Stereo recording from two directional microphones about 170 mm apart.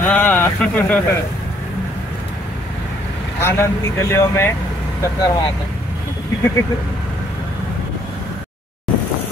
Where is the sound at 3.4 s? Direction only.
15° left (ahead or behind).